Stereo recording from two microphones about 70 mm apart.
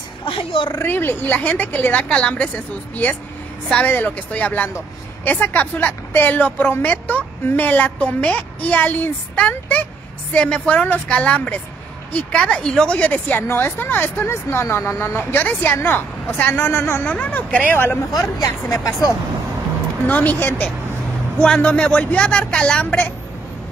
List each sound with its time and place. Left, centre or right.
0.8 s a woman's voice: left
13.5 s speech: left
17.0 s a woman's voice: left
18.1 s speech: left
20.1 s a woman's voice: left
22.8 s a woman's voice: left